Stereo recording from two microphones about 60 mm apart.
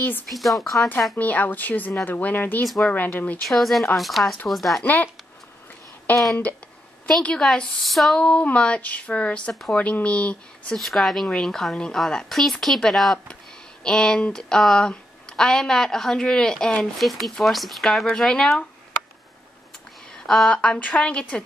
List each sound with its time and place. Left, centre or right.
0.3 s speech: centre
1.1 s speech: left
2.6 s speech: centre
2.9 s speech: left
3.4 s speech: centre
4.8 s speech: left
7.3 s speech: centre
7.8 s speech: centre
8.2 s speech: centre
9.5 s speech: centre
10.0 s speech: left
10.8 s speech: centre
20.2 s speech: centre